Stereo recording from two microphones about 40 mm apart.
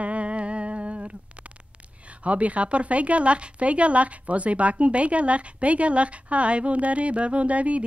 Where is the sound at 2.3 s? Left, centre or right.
Right.